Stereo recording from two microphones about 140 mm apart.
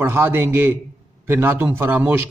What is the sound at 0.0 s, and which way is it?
Speech, 15° right (ahead or behind).